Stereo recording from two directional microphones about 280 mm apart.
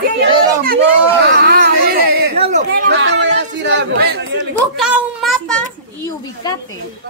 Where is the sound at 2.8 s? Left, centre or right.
Right.